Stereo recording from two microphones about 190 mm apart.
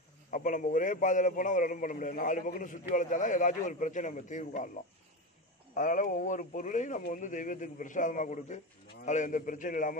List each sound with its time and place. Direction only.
0.3 s a man's voice: 45° left (ahead or behind)
5.8 s speech: 45° left (ahead or behind)